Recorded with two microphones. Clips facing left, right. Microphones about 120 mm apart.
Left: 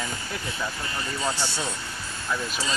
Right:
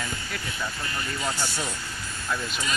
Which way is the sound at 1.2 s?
25° left (ahead or behind).